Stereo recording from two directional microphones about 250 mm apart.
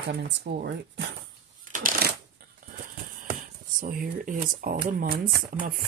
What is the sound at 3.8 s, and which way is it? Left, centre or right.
Speech, right.